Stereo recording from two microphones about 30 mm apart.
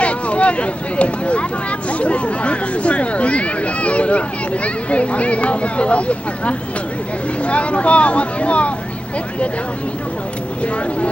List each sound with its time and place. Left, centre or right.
0.0 s speech: left